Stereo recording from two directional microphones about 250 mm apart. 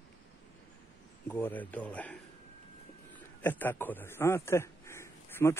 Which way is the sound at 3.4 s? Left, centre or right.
Centre.